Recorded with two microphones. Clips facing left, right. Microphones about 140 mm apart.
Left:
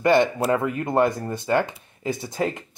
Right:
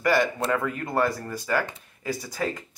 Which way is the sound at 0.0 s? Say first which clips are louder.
Left 4 dB; 25° left (ahead or behind).